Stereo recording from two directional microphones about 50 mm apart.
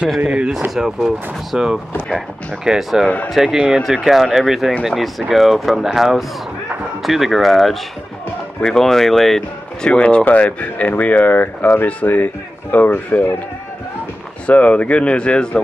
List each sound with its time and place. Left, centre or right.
0.2 s speech: right
0.7 s speech: centre
9.8 s speech: left
14.4 s speech: left